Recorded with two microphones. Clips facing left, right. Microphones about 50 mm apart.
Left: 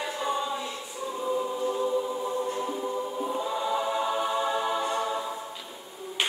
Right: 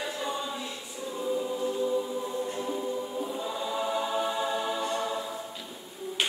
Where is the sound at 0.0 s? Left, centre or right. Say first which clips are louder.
Left 3 dB; centre.